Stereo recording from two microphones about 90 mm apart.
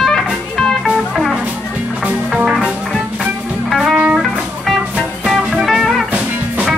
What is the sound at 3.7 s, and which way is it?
Music, 5° right (ahead or behind).